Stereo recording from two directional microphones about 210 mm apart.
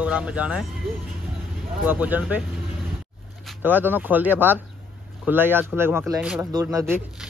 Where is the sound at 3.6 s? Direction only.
10° right (ahead or behind).